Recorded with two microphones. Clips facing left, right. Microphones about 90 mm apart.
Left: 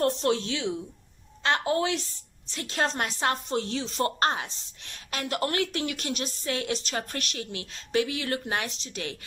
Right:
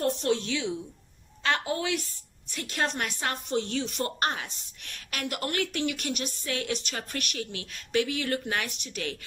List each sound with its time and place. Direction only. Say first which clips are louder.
0.1 s a woman's voice: left 1 dB; 35° left (ahead or behind)